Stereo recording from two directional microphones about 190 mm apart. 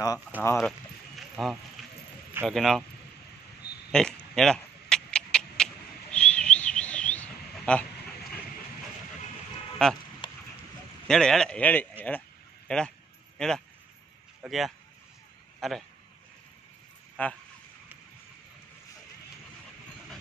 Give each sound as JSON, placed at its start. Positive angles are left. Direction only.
{"t": 0.4, "sound": "speech", "side_deg": 15}
{"t": 0.7, "sound": "a sound", "side_deg": 0}
{"t": 2.4, "sound": "speech", "side_deg": 0}
{"t": 3.9, "sound": "a sound", "side_deg": 5}
{"t": 6.1, "sound": "bird", "side_deg": 5}
{"t": 9.8, "sound": "speech", "side_deg": 5}
{"t": 10.2, "sound": "horse", "side_deg": 25}
{"t": 11.1, "sound": "speech", "side_deg": 5}
{"t": 17.2, "sound": "speech", "side_deg": 10}